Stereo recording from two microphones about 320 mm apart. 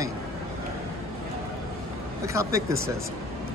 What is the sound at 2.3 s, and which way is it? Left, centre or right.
Speech, centre.